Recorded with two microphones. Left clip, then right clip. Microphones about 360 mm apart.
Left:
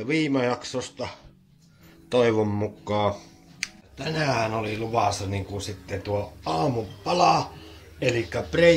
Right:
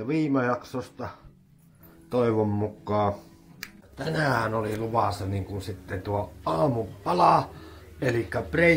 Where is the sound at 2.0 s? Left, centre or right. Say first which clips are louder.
Left 3 dB; left.